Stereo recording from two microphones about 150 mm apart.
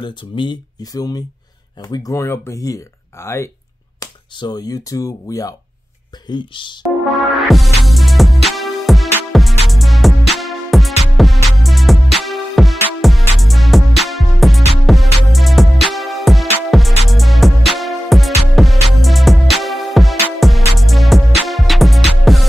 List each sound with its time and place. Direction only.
0.0 s speech: 30° left (ahead or behind)
7.1 s music: centre (ahead or behind)